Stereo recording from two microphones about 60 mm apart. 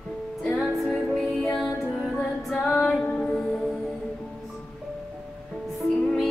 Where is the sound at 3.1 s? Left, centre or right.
Centre.